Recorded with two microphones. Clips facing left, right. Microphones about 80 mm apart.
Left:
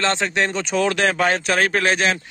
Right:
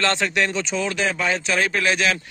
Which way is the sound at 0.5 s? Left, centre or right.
Left.